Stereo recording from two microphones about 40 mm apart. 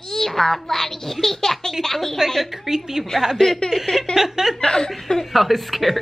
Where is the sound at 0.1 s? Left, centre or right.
Centre.